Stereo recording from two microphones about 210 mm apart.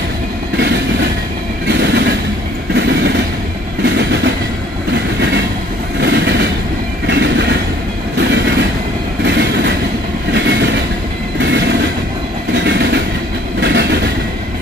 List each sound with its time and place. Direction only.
1.7 s train: 55° right (ahead or behind)
5.9 s vehicle: 55° right (ahead or behind)
7.1 s train: 55° right (ahead or behind)
12.5 s train: 55° right (ahead or behind)